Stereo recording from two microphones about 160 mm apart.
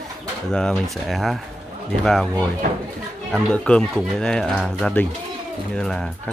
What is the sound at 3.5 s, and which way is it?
Speech, 5° left (ahead or behind).